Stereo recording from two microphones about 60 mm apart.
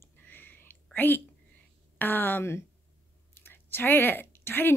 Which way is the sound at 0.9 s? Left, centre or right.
Left.